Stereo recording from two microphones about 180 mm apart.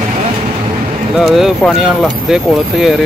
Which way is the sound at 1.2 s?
Centre (ahead or behind).